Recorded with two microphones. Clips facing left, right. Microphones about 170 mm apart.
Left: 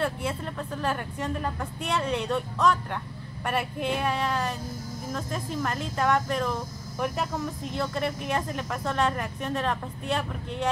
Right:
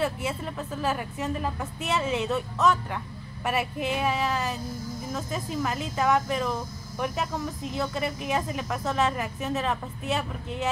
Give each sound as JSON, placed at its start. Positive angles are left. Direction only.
{"t": 0.0, "sound": "speech", "side_deg": -5}